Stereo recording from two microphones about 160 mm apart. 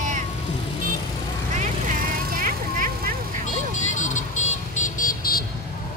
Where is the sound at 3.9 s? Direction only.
50° left (ahead or behind); by 5.4 s 65° left (ahead or behind).